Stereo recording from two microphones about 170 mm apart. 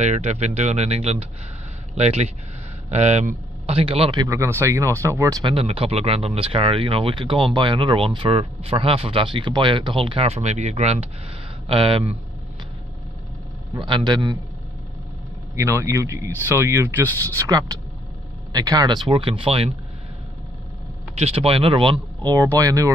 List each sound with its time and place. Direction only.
0.0 s speech: 40° right (ahead or behind); by 5.5 s 20° right (ahead or behind)
5.5 s speech: 35° right (ahead or behind)
13.7 s speech: 30° right (ahead or behind)
15.5 s speech: 15° right (ahead or behind); by 19.7 s 35° right (ahead or behind)
21.1 s speech: 35° right (ahead or behind); by 22.9 s 20° right (ahead or behind)